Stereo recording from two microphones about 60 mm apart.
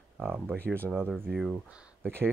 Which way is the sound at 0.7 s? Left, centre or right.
Right.